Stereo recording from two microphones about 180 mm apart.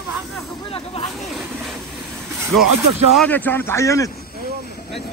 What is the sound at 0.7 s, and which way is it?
Snake, 30° left (ahead or behind).